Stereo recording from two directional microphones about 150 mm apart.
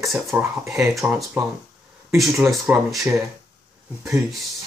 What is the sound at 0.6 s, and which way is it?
Speech, 20° right (ahead or behind).